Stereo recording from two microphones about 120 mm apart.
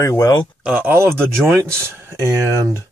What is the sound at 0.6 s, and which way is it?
Speech, 10° right (ahead or behind).